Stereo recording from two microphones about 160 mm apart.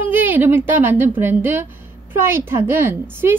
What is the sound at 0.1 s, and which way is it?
A woman's voice, 10° right (ahead or behind).